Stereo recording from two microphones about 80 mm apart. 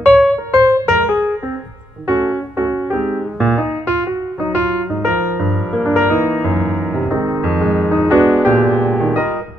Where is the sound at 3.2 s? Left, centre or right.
Centre.